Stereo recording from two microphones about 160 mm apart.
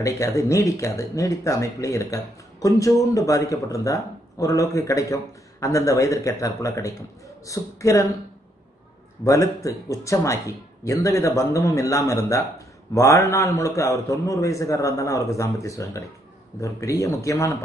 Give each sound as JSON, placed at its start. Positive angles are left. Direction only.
{"t": 0.0, "sound": "speech", "side_deg": 20}
{"t": 9.2, "sound": "speech", "side_deg": 20}